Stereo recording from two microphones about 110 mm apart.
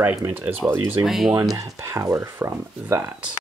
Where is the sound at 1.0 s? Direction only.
Centre (ahead or behind).